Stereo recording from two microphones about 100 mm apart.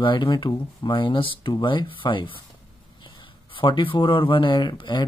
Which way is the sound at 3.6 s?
55° left (ahead or behind).